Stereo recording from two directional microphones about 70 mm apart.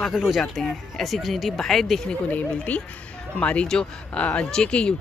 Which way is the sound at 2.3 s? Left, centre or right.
Left.